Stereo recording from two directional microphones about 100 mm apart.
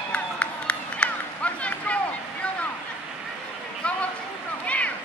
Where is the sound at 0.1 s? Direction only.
15° left (ahead or behind).